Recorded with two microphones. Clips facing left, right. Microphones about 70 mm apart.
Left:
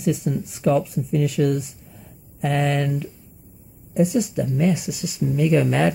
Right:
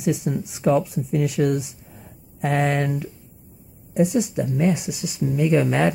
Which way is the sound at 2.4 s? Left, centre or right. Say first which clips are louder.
Even; right.